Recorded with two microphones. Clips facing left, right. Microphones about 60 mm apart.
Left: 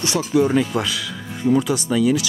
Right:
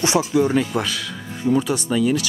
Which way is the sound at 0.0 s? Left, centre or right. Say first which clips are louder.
Right 4 dB; right.